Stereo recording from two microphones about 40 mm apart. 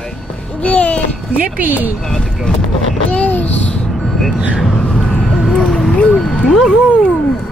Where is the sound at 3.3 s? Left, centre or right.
Left.